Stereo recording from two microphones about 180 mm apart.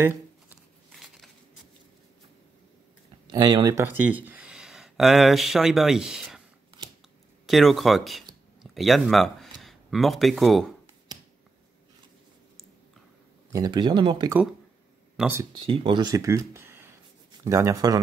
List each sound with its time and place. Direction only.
0.0 s shuffling cards: 10° right (ahead or behind)
0.9 s a sound: centre (ahead or behind)
3.3 s speech: 20° right (ahead or behind); by 6.4 s centre (ahead or behind)
7.4 s speech: centre (ahead or behind)
11.1 s finger snapping: 25° right (ahead or behind)
13.5 s speech: 20° right (ahead or behind)
15.1 s speech: 10° right (ahead or behind)
15.6 s a man's voice: 30° right (ahead or behind)